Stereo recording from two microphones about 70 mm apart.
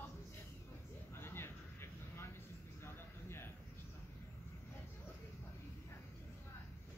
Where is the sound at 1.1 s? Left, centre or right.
Left.